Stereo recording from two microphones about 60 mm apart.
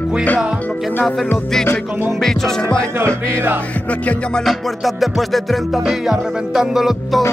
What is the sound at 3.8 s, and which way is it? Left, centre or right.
Music, left.